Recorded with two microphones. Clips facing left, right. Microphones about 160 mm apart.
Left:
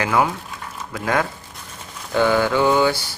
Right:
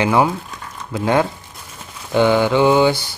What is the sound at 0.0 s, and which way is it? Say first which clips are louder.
Speech: right 4 dB; 25° right (ahead or behind).